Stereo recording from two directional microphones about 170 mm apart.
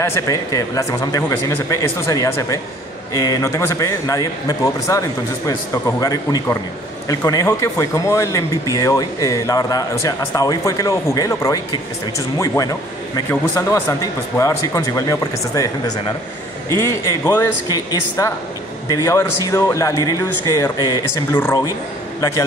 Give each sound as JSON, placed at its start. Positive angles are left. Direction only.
{"t": 0.0, "sound": "a man's voice", "side_deg": 15}